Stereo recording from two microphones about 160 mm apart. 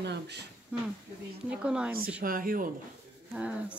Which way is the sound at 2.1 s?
60° right (ahead or behind).